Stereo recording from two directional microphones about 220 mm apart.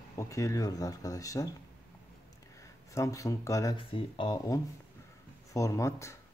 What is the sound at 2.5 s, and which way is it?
Speech, 15° left (ahead or behind).